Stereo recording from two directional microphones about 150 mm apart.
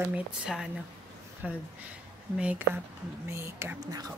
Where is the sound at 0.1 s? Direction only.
5° right (ahead or behind).